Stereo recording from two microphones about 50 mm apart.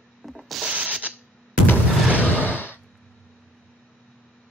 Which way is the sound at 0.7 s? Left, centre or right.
Right.